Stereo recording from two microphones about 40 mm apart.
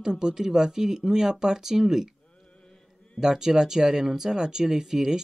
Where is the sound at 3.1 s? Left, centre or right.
Centre.